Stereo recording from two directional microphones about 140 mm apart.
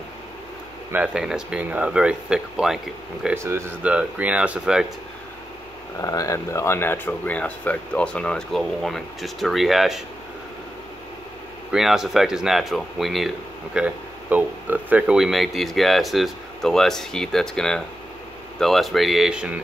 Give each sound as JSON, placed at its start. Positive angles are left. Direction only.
{"t": 0.9, "sound": "speech", "side_deg": -5}
{"t": 3.3, "sound": "speech", "side_deg": -20}
{"t": 5.9, "sound": "speech", "side_deg": 25}
{"t": 11.7, "sound": "speech", "side_deg": -5}